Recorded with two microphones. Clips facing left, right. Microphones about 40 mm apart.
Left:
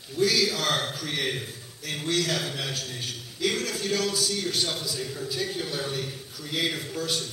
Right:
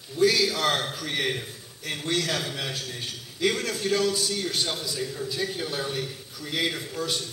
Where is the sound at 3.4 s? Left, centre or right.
Centre.